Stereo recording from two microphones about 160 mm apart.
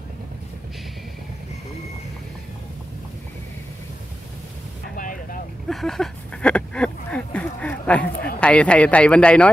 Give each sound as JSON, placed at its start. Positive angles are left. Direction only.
{"t": 4.9, "sound": "vehicle", "side_deg": 60}
{"t": 5.7, "sound": "a sound", "side_deg": 0}
{"t": 8.4, "sound": "speech", "side_deg": 5}